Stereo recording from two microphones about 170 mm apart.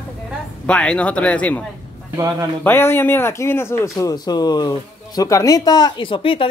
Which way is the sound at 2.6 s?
10° left (ahead or behind).